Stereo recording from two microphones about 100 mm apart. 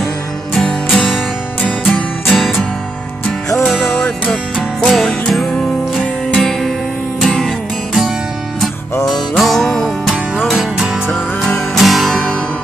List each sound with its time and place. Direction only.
0.6 s music: 5° left (ahead or behind)
2.2 s music: centre (ahead or behind)
3.6 s music: 5° left (ahead or behind)